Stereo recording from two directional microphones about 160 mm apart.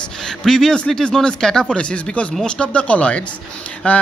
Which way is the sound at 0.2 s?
5° left (ahead or behind).